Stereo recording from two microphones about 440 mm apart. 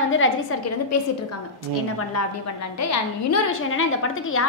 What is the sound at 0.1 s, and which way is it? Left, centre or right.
Speech, left.